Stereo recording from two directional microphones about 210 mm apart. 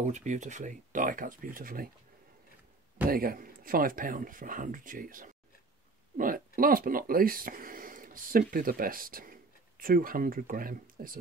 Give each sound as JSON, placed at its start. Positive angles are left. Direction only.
{"t": 0.0, "sound": "a man's voice", "side_deg": -35}
{"t": 3.1, "sound": "a man's voice", "side_deg": -45}